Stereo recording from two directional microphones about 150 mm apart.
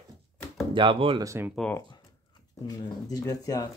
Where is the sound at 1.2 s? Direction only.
15° right (ahead or behind).